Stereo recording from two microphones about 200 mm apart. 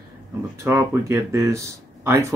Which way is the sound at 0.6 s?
15° right (ahead or behind).